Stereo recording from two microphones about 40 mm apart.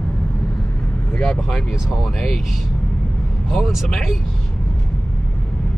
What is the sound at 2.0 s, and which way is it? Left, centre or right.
Speech, centre.